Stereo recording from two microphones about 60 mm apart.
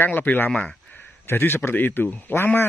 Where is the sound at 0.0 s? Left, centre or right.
Left.